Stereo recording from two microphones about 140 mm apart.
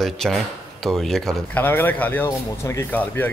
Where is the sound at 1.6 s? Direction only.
15° left (ahead or behind).